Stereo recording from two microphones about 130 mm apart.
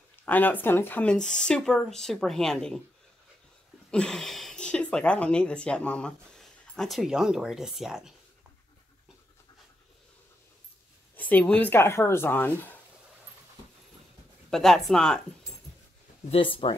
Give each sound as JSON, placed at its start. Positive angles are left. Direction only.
{"t": 0.1, "sound": "speech", "side_deg": 15}
{"t": 3.9, "sound": "speech", "side_deg": 5}
{"t": 11.1, "sound": "speech", "side_deg": 15}
{"t": 14.5, "sound": "speech", "side_deg": 0}
{"t": 16.3, "sound": "speech", "side_deg": 45}